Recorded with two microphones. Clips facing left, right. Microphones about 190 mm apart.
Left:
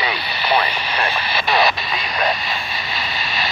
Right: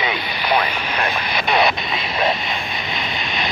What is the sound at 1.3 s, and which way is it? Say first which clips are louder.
Speech: even; 20° right (ahead or behind).